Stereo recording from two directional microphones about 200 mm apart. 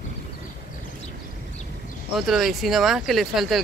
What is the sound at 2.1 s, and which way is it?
Speech, centre (ahead or behind).